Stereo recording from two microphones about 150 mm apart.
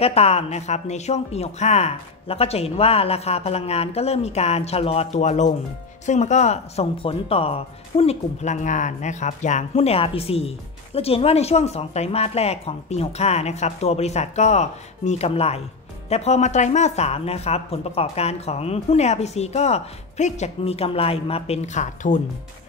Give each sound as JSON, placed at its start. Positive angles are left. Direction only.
{"t": 0.0, "sound": "speech", "side_deg": 45}